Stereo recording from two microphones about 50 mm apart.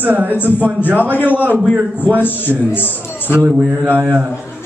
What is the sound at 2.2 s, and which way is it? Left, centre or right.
A man's voice, left.